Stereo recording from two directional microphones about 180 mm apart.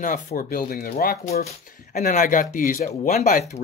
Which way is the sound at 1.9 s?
45° left (ahead or behind).